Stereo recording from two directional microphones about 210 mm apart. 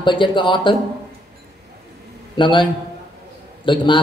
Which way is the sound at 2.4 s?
20° left (ahead or behind).